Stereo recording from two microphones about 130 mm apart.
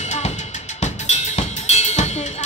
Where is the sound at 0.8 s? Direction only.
60° left (ahead or behind).